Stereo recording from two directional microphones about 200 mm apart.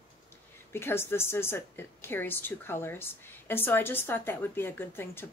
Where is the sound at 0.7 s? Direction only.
10° left (ahead or behind).